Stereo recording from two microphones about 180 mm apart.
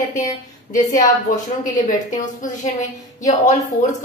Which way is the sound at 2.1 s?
45° left (ahead or behind).